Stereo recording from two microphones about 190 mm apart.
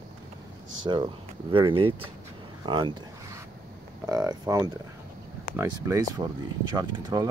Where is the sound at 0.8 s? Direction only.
25° right (ahead or behind).